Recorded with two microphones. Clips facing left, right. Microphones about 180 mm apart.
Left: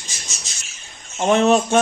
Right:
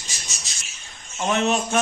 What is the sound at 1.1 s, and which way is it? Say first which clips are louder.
Speech: left 7 dB; 35° left (ahead or behind).